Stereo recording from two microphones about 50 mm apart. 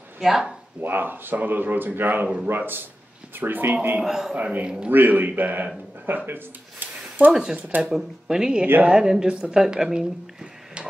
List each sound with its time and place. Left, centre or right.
0.2 s speech: centre
0.7 s speech: right
4.0 s speech: centre
4.4 s speech: right
7.5 s speech: right
7.9 s speech: centre